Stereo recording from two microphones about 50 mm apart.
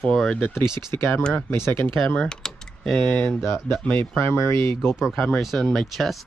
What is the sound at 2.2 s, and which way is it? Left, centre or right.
Typing, centre.